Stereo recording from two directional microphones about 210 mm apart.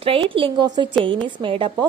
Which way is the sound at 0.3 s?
25° right (ahead or behind).